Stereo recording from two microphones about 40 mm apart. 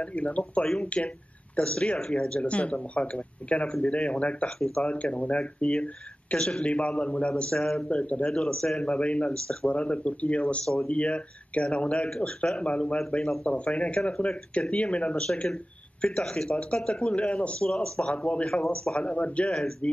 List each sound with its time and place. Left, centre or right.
0.0 s speech: left
7.5 s speech: centre
7.9 s speech: left
8.4 s speech: centre
8.8 s speech: left
13.2 s speech: centre
13.5 s speech: left